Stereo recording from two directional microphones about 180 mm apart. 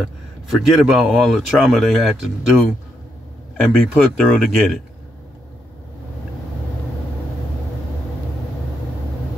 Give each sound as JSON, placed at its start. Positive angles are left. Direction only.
{"t": 0.5, "sound": "speech", "side_deg": -5}
{"t": 3.6, "sound": "speech", "side_deg": 5}